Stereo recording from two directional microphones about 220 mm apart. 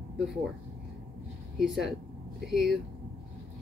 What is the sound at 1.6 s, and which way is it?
Speech, centre (ahead or behind).